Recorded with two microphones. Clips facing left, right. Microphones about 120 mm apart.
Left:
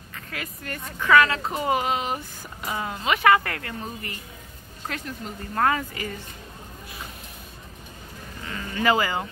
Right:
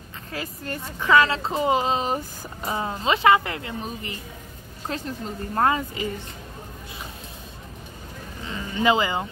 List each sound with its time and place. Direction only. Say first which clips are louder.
0.3 s speech: right 4 dB; 30° right (ahead or behind)
8.5 s speech: right 1 dB; 20° right (ahead or behind)